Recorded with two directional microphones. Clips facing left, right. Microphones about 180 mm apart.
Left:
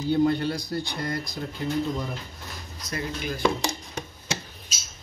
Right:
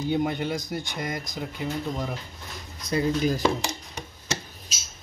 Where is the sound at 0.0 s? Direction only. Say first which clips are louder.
Left 3 dB; 20° right (ahead or behind).